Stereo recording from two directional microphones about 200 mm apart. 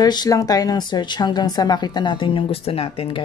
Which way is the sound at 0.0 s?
20° left (ahead or behind).